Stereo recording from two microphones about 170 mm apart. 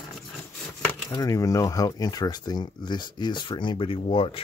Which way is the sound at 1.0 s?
20° left (ahead or behind).